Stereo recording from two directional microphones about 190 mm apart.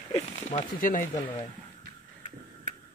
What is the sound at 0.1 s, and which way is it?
Speech, 40° left (ahead or behind).